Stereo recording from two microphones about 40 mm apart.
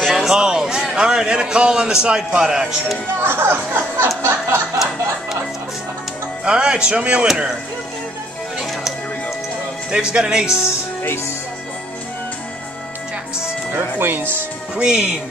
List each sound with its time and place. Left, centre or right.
0.1 s music: centre
0.4 s a sound: centre
0.9 s a man's voice: centre
3.2 s speech: right
4.2 s a sound: right
6.4 s a man's voice: right
9.8 s a man's voice: right
13.7 s speech: right
14.8 s speech: centre